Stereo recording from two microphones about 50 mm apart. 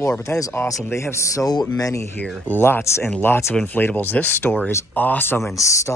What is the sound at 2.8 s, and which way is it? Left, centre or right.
Speech, left.